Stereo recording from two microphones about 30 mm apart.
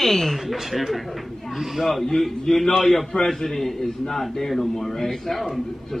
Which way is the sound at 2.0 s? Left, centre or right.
Centre.